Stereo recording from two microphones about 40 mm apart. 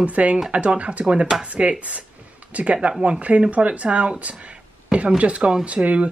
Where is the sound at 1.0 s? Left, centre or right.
Right.